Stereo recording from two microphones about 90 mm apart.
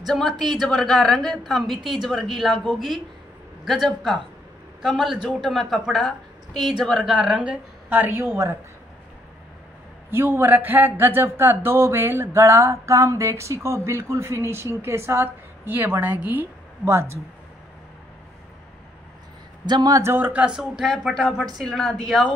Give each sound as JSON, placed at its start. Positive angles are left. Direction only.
{"t": 0.0, "sound": "a woman's voice", "side_deg": 5}
{"t": 3.6, "sound": "a woman's voice", "side_deg": 0}
{"t": 7.0, "sound": "speech", "side_deg": -10}
{"t": 7.9, "sound": "speech", "side_deg": -25}
{"t": 10.1, "sound": "speech", "side_deg": -25}
{"t": 19.6, "sound": "speech", "side_deg": -50}
{"t": 20.0, "sound": "speech", "side_deg": -25}
{"t": 20.4, "sound": "a woman's voice", "side_deg": -5}
{"t": 21.5, "sound": "a woman's voice", "side_deg": 5}